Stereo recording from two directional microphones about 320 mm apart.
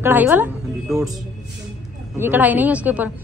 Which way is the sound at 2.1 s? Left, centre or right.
Centre.